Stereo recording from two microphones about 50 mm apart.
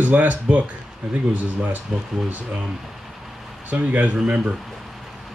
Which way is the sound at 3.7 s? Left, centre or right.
Right.